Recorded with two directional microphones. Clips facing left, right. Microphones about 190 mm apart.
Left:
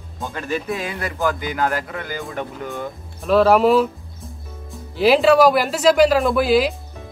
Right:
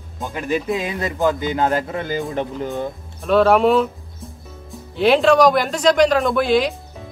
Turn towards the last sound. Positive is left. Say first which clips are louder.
# left 1 dB
turn(degrees=5)  # may be behind; listen again after turning